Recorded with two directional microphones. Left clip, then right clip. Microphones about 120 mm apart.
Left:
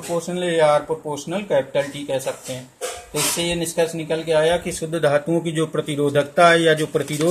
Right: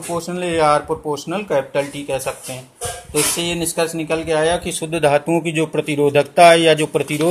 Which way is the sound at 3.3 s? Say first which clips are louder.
Right 1 dB; 25° right (ahead or behind).